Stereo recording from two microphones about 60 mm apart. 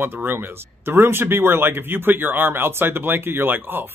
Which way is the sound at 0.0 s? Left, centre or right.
Right.